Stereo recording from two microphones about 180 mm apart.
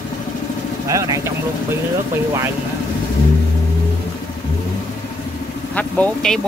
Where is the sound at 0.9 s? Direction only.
15° right (ahead or behind).